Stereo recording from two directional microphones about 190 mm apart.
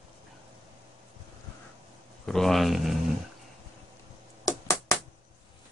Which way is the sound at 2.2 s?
Centre (ahead or behind).